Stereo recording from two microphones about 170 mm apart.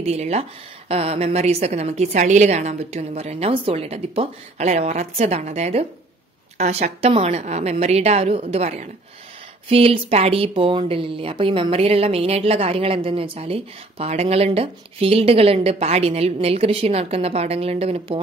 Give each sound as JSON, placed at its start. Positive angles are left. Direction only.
{"t": 0.0, "sound": "a woman's voice", "side_deg": -40}